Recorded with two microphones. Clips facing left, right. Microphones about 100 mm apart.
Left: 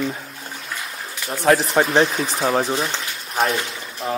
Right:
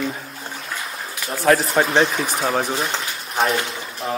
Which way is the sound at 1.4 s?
20° left (ahead or behind).